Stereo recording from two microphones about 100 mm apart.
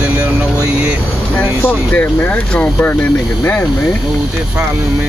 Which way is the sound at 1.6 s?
20° left (ahead or behind).